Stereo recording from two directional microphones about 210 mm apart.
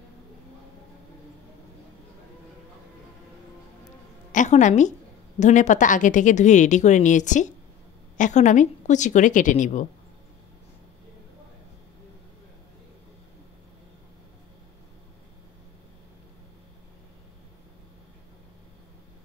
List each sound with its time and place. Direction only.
4.3 s a woman's voice: 35° left (ahead or behind)